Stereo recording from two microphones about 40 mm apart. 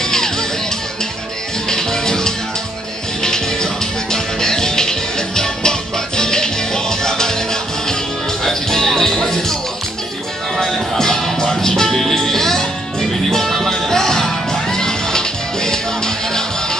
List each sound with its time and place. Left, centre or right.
0.0 s music: centre
1.7 s music: centre
8.5 s music: centre
11.0 s music: centre